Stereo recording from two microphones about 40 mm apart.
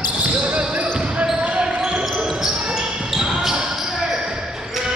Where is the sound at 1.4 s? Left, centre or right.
Right.